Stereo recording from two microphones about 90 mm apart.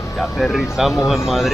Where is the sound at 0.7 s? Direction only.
Centre (ahead or behind).